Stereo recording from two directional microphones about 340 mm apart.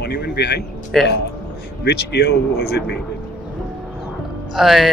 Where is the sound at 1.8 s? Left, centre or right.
Left.